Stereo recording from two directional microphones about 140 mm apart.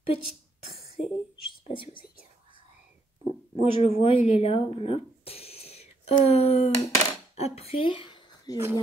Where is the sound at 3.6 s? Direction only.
45° left (ahead or behind); by 8.6 s 30° left (ahead or behind).